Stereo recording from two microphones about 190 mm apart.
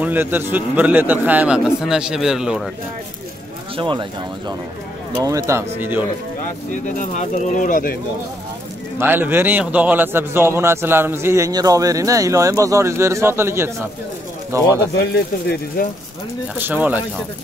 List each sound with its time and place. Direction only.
0.0 s a man's voice: 10° right (ahead or behind)
3.7 s speech: 25° right (ahead or behind)
5.1 s a man's voice: 15° right (ahead or behind)
6.7 s speech: 40° left (ahead or behind)
9.0 s a man's voice: 10° right (ahead or behind)
15.1 s speech: 55° left (ahead or behind)
16.5 s a man's voice: 10° right (ahead or behind)